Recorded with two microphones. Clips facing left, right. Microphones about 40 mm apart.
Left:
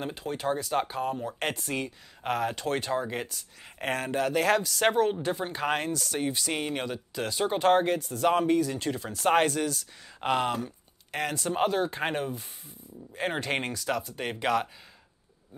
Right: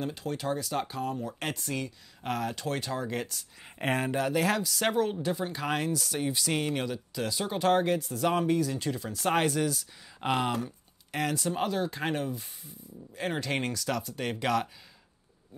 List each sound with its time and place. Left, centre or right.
0.0 s speech: centre
3.8 s speech: centre
4.2 s speech: centre